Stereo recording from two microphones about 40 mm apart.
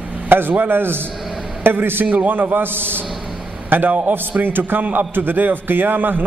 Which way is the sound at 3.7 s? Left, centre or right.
Right.